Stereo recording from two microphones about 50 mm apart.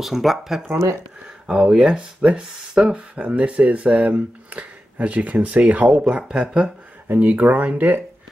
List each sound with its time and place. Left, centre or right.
0.0 s speech: centre
1.8 s speech: right
7.1 s speech: right